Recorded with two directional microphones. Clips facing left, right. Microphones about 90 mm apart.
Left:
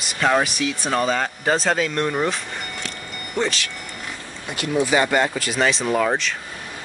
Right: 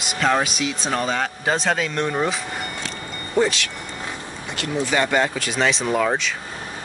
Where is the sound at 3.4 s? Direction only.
15° right (ahead or behind).